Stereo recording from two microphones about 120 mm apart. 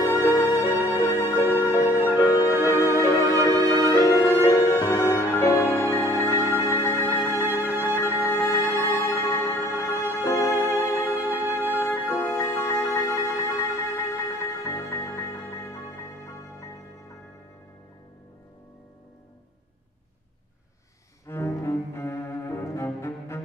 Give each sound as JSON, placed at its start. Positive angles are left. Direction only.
{"t": 0.1, "sound": "music", "side_deg": 25}
{"t": 7.4, "sound": "music", "side_deg": -15}
{"t": 8.4, "sound": "music", "side_deg": 25}
{"t": 21.3, "sound": "cello", "side_deg": 25}
{"t": 23.0, "sound": "music", "side_deg": 25}